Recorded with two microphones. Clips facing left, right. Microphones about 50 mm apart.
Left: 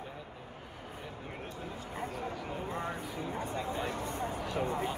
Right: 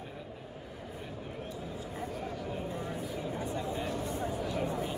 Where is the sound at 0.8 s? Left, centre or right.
Left.